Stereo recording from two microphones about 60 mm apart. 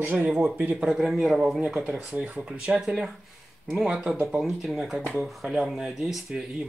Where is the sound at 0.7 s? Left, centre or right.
Centre.